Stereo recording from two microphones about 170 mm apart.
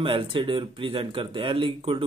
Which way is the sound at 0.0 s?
30° right (ahead or behind).